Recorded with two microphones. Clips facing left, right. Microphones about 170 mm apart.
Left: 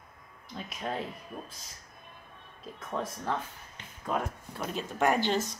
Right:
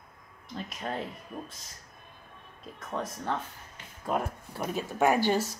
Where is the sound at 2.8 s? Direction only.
Centre (ahead or behind).